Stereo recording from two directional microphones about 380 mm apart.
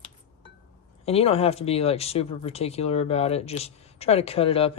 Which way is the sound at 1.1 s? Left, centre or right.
Centre.